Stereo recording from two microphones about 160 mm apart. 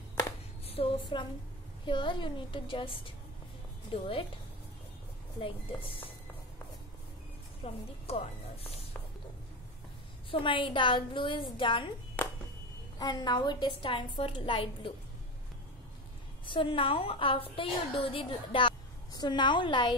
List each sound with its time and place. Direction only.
0.7 s a sound: 35° left (ahead or behind)
1.9 s a woman's voice: 30° left (ahead or behind)
5.4 s a woman's voice: 35° left (ahead or behind)
7.6 s a woman's voice: 35° left (ahead or behind)
10.3 s a woman's voice: 30° left (ahead or behind)
12.2 s a sound: 10° left (ahead or behind)
13.0 s a woman's voice: 25° left (ahead or behind)
16.4 s a woman's voice: 30° left (ahead or behind)